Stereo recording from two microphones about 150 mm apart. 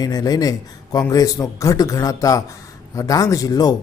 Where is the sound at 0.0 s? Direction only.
25° left (ahead or behind).